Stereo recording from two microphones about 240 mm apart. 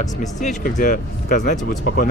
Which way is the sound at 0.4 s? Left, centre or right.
Left.